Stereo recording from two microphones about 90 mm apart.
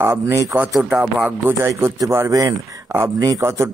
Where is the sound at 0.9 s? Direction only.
15° right (ahead or behind).